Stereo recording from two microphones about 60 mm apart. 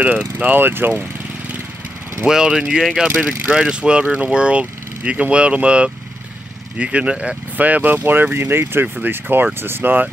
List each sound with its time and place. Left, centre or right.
0.0 s speech: right
2.2 s speech: centre
7.5 s speech: right
8.8 s speech: right
9.1 s speech: right